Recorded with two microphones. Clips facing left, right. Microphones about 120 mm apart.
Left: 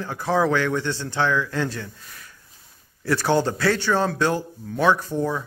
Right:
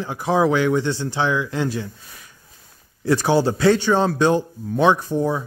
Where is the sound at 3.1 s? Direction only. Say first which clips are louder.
Right 3 dB; 15° right (ahead or behind).